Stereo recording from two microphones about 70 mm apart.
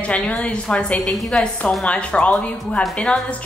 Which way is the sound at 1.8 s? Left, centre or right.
Centre.